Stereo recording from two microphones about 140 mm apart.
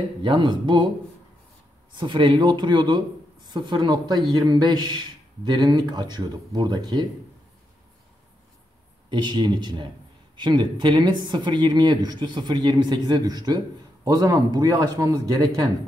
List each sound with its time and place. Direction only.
0.2 s speech: 35° right (ahead or behind)
1.9 s speech: 35° right (ahead or behind)
9.1 s speech: 30° right (ahead or behind)